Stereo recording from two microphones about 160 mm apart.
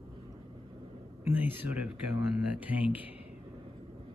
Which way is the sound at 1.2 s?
10° right (ahead or behind).